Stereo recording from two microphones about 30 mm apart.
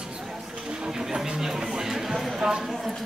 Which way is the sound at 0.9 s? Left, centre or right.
Centre.